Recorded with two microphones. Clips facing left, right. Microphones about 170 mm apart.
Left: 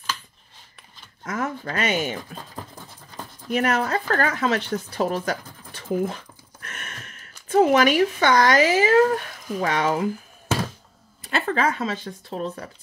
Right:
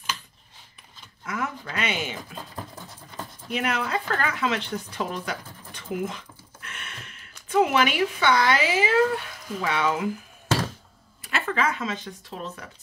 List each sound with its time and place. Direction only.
1.2 s speech: 40° left (ahead or behind)
3.4 s speech: 45° left (ahead or behind)
11.2 s speech: 35° left (ahead or behind)